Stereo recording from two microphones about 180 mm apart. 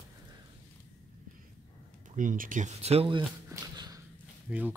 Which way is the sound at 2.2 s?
45° right (ahead or behind).